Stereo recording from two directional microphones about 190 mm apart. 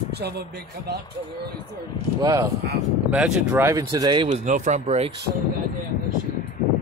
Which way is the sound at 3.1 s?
5° right (ahead or behind).